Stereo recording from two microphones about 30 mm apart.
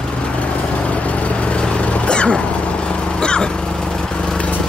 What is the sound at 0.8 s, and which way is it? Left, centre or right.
Vehicle, left.